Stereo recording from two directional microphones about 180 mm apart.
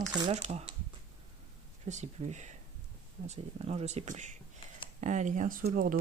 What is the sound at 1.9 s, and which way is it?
Speech, 40° right (ahead or behind).